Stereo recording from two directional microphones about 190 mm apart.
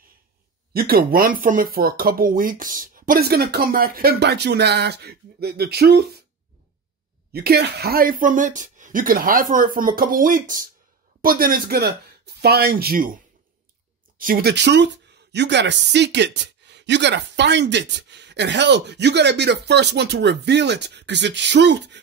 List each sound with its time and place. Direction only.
0.7 s speech: 55° right (ahead or behind)
7.3 s speech: 55° right (ahead or behind)
14.1 s speech: 50° right (ahead or behind); by 22.0 s 65° right (ahead or behind)